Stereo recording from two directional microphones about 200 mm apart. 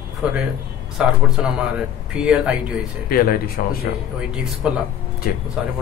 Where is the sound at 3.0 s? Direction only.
50° left (ahead or behind).